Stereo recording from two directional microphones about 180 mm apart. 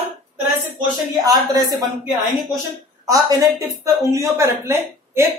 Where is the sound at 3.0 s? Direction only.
20° right (ahead or behind).